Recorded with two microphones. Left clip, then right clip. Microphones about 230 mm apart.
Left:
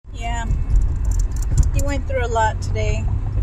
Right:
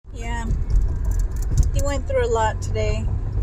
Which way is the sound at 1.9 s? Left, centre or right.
Centre.